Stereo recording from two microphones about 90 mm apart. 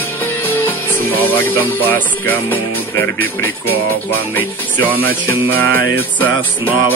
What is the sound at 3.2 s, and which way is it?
Speech, 20° left (ahead or behind).